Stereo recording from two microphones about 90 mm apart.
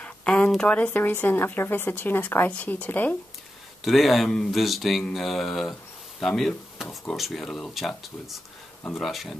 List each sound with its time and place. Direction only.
0.0 s a sound: 15° left (ahead or behind)
0.5 s speech: 10° left (ahead or behind)
3.8 s speech: centre (ahead or behind)